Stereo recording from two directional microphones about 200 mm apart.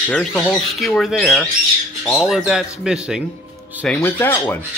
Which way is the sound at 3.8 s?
10° left (ahead or behind).